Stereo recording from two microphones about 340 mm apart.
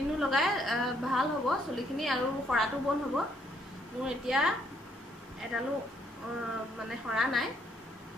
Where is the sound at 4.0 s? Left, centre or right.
Centre.